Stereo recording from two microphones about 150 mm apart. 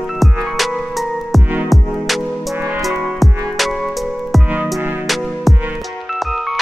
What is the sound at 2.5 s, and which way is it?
Music, 15° right (ahead or behind).